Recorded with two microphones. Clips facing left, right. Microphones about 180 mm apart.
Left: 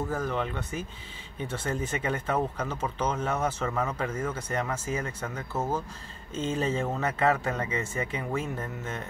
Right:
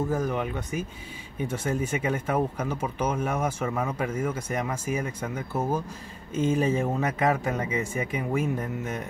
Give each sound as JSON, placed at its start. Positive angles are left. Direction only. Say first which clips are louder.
{"t": 0.1, "sound": "speech", "louder": "right 3 dB", "side_deg": -10}